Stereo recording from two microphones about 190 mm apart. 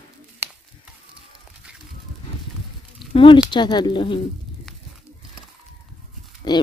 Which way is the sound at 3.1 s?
30° left (ahead or behind).